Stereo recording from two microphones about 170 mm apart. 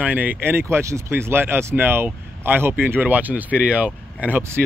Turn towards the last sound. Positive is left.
turn(degrees=-10)  # may be behind; listen again after turning